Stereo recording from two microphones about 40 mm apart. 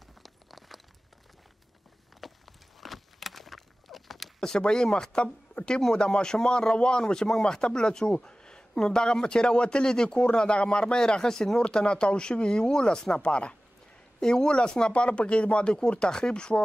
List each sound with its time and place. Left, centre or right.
0.2 s clip-clop: centre
2.2 s walk: centre
2.8 s a sound: centre
4.4 s speech: centre
11.6 s speech: left